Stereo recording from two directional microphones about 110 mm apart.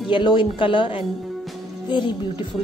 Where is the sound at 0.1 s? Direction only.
50° left (ahead or behind).